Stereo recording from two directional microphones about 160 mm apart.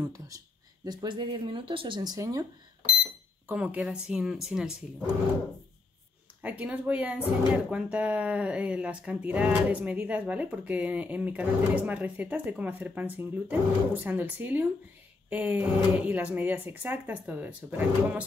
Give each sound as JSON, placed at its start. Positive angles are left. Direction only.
{"t": 0.0, "sound": "speech", "side_deg": -20}
{"t": 3.4, "sound": "speech", "side_deg": -10}
{"t": 6.4, "sound": "speech", "side_deg": -10}